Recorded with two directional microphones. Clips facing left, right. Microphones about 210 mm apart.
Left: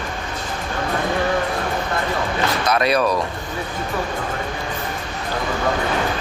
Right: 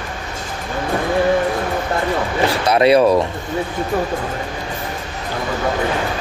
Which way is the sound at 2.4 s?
30° right (ahead or behind).